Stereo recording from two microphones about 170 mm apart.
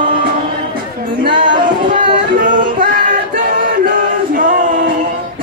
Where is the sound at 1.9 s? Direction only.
50° right (ahead or behind).